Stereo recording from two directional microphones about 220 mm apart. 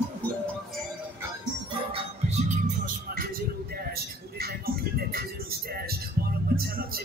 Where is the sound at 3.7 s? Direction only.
45° right (ahead or behind).